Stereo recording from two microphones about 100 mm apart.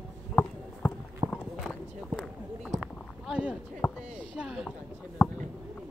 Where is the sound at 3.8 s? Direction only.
10° left (ahead or behind).